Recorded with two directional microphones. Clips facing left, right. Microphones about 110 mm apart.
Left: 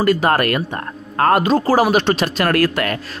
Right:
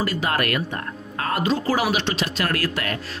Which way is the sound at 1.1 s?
55° left (ahead or behind).